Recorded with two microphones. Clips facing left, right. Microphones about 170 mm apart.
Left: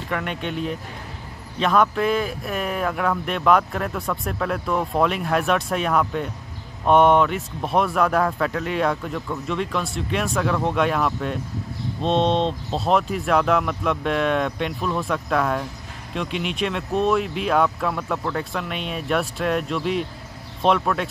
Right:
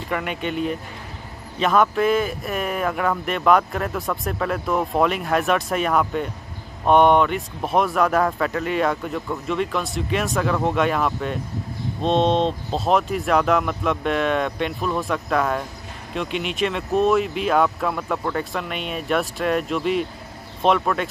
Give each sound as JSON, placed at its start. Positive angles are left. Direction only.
{"t": 0.1, "sound": "speech", "side_deg": -5}